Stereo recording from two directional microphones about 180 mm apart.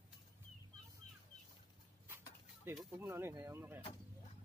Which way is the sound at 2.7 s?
Centre (ahead or behind).